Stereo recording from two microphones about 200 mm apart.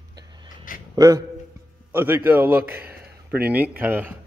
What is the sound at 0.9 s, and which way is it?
A man's voice, 15° right (ahead or behind).